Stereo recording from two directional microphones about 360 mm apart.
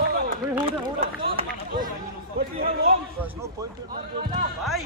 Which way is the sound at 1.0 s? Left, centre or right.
Centre.